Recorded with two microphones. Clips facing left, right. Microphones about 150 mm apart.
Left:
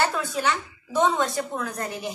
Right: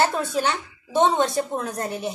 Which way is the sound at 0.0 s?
30° right (ahead or behind).